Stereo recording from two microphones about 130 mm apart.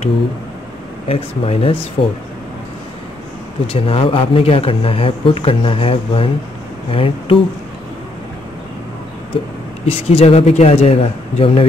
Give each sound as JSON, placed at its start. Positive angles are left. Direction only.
{"t": 1.0, "sound": "speech", "side_deg": 50}
{"t": 3.6, "sound": "speech", "side_deg": 45}
{"t": 9.8, "sound": "speech", "side_deg": 55}